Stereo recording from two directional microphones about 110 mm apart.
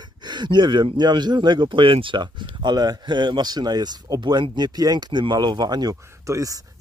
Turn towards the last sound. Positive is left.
turn(degrees=-30)  # may be behind; listen again after turning